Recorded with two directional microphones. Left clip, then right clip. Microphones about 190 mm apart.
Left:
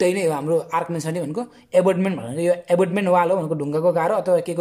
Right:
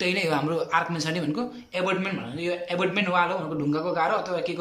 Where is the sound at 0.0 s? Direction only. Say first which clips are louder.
Left 5 dB; 35° left (ahead or behind).